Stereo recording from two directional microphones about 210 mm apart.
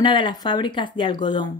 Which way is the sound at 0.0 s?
20° left (ahead or behind).